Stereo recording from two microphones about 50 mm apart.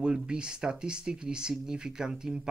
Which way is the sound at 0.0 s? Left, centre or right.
Centre.